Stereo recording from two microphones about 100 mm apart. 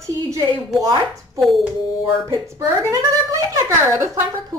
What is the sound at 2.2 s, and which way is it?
Speech, 30° right (ahead or behind).